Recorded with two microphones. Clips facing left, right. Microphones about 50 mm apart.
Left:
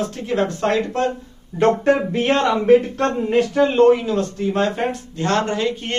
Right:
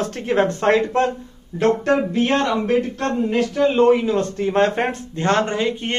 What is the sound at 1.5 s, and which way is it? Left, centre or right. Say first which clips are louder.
Speech: left 3 dB; centre.